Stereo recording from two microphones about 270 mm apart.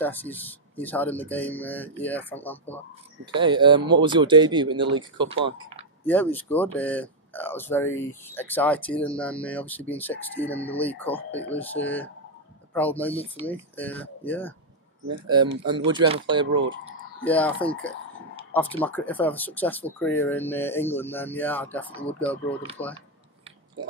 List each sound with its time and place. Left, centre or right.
0.0 s speech: centre
3.3 s speech: centre
6.0 s speech: centre
15.2 s speech: centre
16.5 s speech: right
17.2 s speech: centre
22.8 s speech: left